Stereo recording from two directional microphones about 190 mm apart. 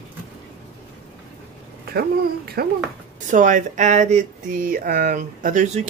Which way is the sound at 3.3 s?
40° right (ahead or behind).